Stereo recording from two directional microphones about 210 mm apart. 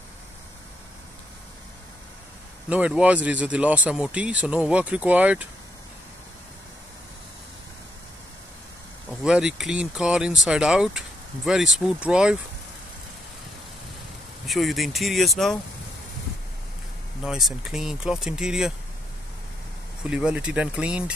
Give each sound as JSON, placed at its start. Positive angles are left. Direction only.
{"t": 2.7, "sound": "speech", "side_deg": -5}
{"t": 9.2, "sound": "speech", "side_deg": -5}
{"t": 14.5, "sound": "speech", "side_deg": 0}
{"t": 17.2, "sound": "speech", "side_deg": 0}
{"t": 20.0, "sound": "speech", "side_deg": -5}